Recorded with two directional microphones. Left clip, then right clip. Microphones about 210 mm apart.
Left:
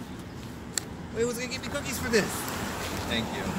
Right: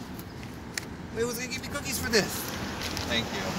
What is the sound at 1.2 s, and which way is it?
Speech, 30° right (ahead or behind).